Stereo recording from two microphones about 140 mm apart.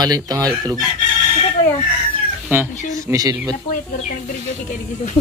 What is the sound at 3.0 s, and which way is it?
Speech, 25° right (ahead or behind).